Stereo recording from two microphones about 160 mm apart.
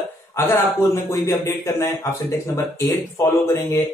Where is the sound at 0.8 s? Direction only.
20° left (ahead or behind).